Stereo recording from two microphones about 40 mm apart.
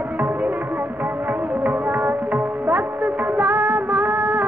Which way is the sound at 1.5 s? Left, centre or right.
Right.